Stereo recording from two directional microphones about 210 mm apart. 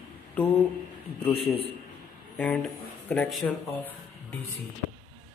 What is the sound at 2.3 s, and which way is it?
Speech, 5° left (ahead or behind).